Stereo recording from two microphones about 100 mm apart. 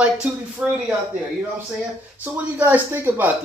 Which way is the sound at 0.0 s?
10° right (ahead or behind).